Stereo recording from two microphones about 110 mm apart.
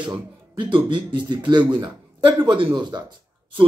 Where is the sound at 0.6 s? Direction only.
50° right (ahead or behind).